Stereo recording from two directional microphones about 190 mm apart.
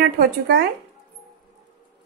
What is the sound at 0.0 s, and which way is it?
Speech, 55° right (ahead or behind).